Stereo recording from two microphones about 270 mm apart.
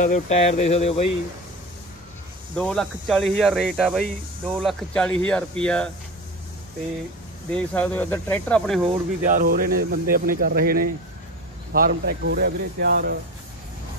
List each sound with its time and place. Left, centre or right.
0.0 s speech: left
2.5 s speech: centre
7.5 s speech: centre
8.8 s speech: right